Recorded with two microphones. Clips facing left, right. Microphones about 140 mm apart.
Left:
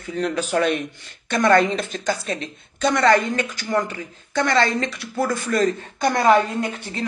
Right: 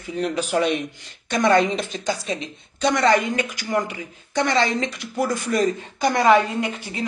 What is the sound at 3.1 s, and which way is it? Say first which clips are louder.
A woman's voice: left 1 dB; 15° right (ahead or behind).